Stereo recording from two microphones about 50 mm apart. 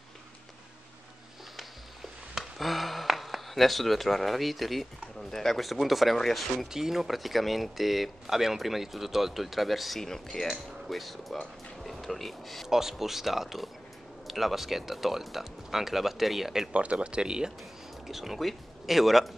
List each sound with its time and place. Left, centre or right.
2.3 s a sound: centre
5.3 s speech: centre
6.7 s speech: centre
10.0 s speech: centre
12.6 s speech: centre
16.7 s speech: right
18.0 s speech: centre